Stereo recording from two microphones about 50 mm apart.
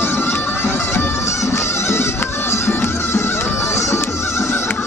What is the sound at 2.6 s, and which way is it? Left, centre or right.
Music, left.